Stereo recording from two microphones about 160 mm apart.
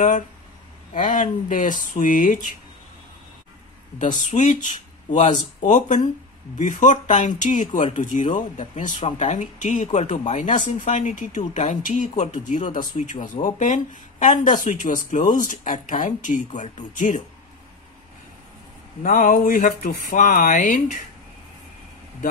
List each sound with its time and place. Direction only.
0.9 s speech: 55° left (ahead or behind)
4.0 s speech: 50° left (ahead or behind)
5.6 s speech: 50° left (ahead or behind)
9.0 s speech: 35° left (ahead or behind)
9.4 s speech: 50° left (ahead or behind)
19.0 s speech: 55° left (ahead or behind)